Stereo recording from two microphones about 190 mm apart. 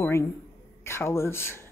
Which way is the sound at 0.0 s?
15° left (ahead or behind).